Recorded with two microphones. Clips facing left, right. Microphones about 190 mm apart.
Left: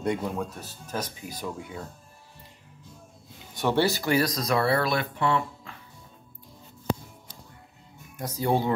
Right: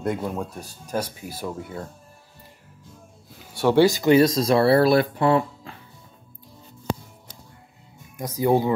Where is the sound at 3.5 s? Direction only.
10° right (ahead or behind); by 5.8 s 35° right (ahead or behind).